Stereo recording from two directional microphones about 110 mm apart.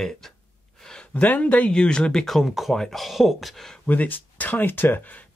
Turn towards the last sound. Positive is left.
turn(degrees=15)  # may be behind; listen again after turning